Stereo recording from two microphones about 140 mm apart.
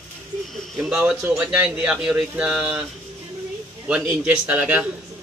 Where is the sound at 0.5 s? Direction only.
Centre (ahead or behind).